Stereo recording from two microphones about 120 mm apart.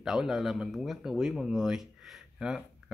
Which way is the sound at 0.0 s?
5° right (ahead or behind).